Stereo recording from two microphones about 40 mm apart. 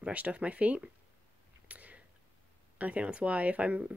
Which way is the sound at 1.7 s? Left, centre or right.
Right.